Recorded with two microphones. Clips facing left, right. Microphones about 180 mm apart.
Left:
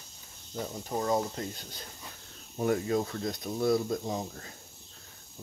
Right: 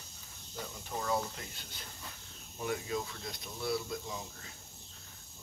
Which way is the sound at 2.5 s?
45° left (ahead or behind).